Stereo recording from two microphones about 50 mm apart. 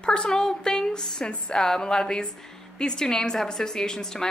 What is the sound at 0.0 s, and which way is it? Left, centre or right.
A woman's voice, centre.